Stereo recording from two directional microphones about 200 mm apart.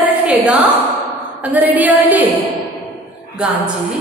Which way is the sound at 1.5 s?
10° right (ahead or behind).